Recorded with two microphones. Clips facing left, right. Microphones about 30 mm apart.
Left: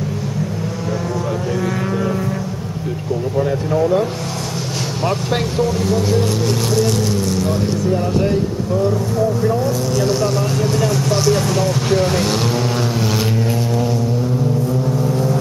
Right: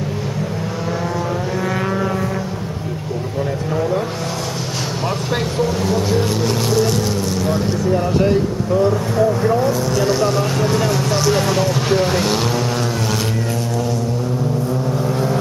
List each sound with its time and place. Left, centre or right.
5.0 s speech: centre
8.9 s speech: right
9.4 s vehicle: right
9.7 s speech: centre